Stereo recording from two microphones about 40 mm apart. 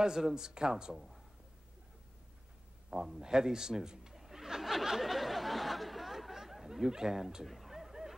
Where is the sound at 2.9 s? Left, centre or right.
Right.